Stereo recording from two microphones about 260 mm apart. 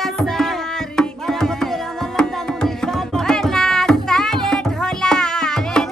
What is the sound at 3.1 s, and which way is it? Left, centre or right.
Music, centre.